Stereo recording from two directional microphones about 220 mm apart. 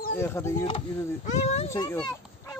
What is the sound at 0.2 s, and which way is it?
Speech, 10° left (ahead or behind).